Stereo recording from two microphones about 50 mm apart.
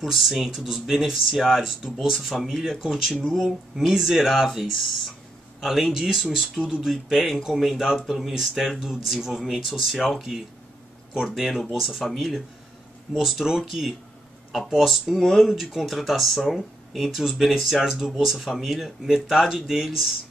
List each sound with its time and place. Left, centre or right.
0.0 s speech: centre
3.3 s speech: centre
3.7 s speech: centre